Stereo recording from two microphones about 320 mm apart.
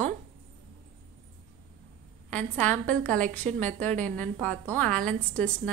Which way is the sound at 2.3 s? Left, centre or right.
Centre.